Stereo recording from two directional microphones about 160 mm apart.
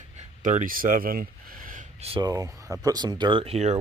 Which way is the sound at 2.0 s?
35° right (ahead or behind).